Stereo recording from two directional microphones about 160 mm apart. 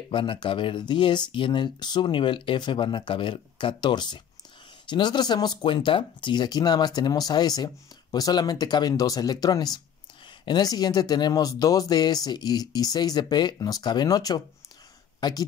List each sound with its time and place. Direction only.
0.1 s speech: 30° left (ahead or behind)